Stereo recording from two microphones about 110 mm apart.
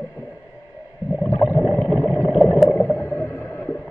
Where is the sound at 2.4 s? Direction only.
Centre (ahead or behind).